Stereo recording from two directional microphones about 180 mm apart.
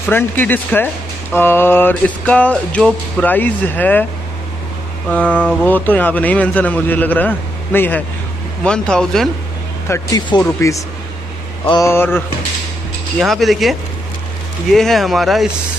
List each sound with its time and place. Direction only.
0.1 s music: 10° left (ahead or behind)
5.1 s music: 10° left (ahead or behind)
8.6 s speech: 5° left (ahead or behind)
9.8 s music: 15° left (ahead or behind)
11.8 s music: 10° left (ahead or behind)
13.2 s speech: centre (ahead or behind)